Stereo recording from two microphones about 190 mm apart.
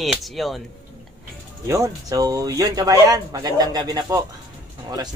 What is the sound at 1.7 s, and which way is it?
Speech, 20° right (ahead or behind).